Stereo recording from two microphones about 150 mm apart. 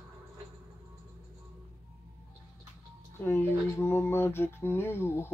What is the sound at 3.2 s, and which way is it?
Speech, 15° left (ahead or behind).